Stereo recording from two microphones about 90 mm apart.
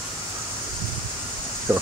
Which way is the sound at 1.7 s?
30° right (ahead or behind).